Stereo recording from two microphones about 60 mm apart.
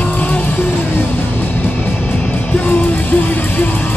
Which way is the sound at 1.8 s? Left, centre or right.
Left.